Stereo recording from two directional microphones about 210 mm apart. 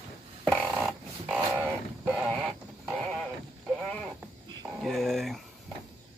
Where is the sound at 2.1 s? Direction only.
Centre (ahead or behind).